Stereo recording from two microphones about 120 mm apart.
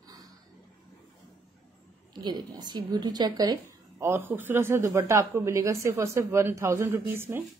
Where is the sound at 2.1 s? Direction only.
35° right (ahead or behind).